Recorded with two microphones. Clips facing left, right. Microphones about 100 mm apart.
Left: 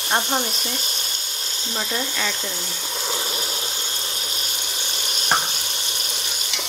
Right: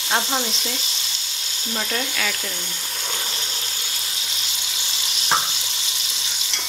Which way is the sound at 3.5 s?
25° left (ahead or behind).